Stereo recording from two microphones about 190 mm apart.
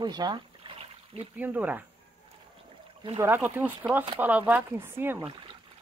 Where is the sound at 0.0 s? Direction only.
20° right (ahead or behind).